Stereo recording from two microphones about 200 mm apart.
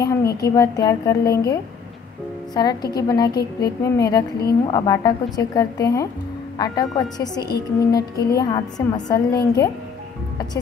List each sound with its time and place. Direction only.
0.0 s a woman's voice: 15° left (ahead or behind)